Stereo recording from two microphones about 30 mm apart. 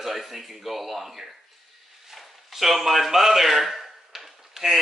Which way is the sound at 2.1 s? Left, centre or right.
Centre.